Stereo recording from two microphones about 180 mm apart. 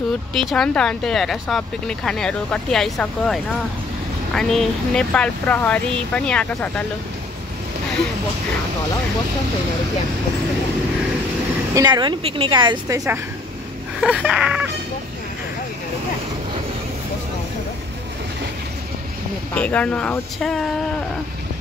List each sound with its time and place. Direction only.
0.3 s speech: centre (ahead or behind)
11.7 s a woman's voice: 25° right (ahead or behind)
14.0 s speech: 5° right (ahead or behind)
19.5 s speech: 5° left (ahead or behind)